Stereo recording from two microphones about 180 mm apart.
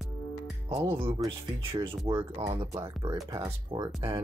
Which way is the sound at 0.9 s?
30° right (ahead or behind).